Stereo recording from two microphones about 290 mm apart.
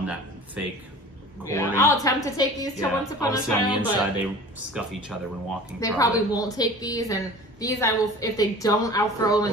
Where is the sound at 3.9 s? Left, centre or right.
Centre.